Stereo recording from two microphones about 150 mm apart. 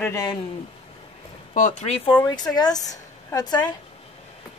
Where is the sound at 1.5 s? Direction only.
55° left (ahead or behind).